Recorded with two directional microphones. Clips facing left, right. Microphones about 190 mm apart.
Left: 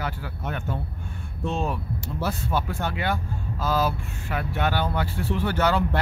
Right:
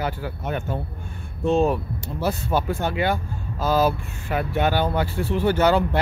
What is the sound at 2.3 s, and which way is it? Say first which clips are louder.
Speech: right 6 dB; 25° right (ahead or behind).